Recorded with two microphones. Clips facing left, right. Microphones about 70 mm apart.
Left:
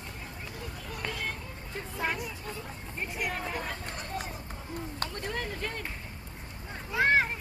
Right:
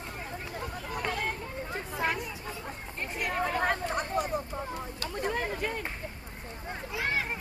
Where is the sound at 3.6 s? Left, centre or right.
Right.